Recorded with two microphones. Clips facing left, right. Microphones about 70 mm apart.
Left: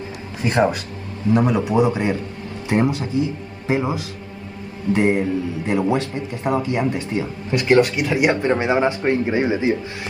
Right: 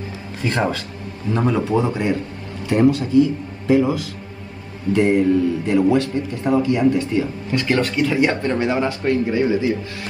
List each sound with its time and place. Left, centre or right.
0.4 s speech: left